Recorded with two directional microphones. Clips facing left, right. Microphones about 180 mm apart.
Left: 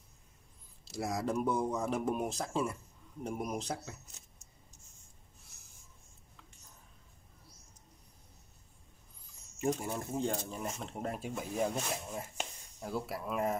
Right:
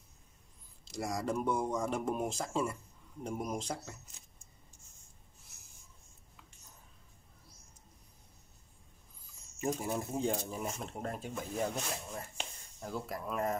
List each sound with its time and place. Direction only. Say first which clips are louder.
0.9 s speech: left 1 dB; centre (ahead or behind)
9.6 s speech: left 1 dB; 5° right (ahead or behind)